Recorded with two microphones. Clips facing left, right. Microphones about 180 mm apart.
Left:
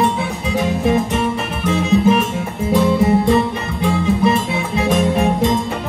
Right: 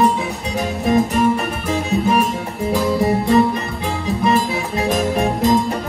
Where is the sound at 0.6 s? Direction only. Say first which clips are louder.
Even; 35° right (ahead or behind).